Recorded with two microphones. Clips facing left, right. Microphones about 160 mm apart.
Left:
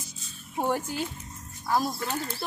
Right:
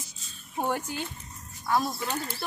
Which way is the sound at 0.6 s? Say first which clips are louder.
Left 2 dB; centre (ahead or behind).